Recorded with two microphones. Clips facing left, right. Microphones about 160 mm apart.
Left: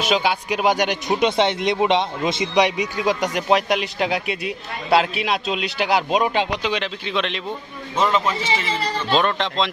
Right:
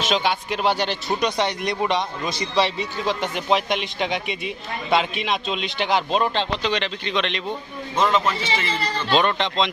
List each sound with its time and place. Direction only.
0.0 s speech: 5° left (ahead or behind)
3.3 s a man's voice: 5° left (ahead or behind)